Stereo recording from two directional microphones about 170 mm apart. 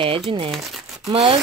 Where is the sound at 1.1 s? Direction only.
30° right (ahead or behind).